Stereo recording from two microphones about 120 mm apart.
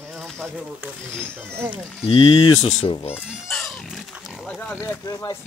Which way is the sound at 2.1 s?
45° left (ahead or behind).